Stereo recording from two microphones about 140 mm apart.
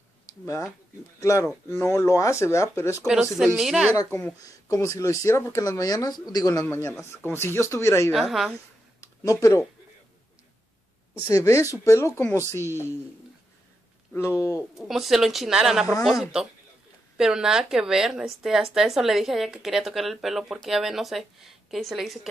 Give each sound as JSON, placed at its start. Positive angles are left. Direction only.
{"t": 0.3, "sound": "speech", "side_deg": 20}
{"t": 3.0, "sound": "a woman's voice", "side_deg": -5}
{"t": 3.9, "sound": "speech", "side_deg": 20}
{"t": 6.6, "sound": "a man's voice", "side_deg": 15}
{"t": 8.1, "sound": "a woman's voice", "side_deg": 0}
{"t": 9.0, "sound": "speech", "side_deg": 25}
{"t": 11.2, "sound": "speech", "side_deg": 25}
{"t": 14.8, "sound": "a woman's voice", "side_deg": 0}